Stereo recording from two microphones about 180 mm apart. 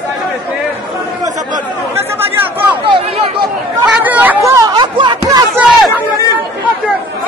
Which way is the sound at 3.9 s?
10° right (ahead or behind).